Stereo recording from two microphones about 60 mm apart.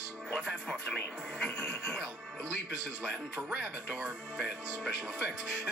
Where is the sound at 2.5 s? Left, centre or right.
Centre.